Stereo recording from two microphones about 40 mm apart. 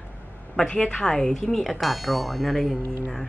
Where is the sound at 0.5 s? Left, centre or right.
Centre.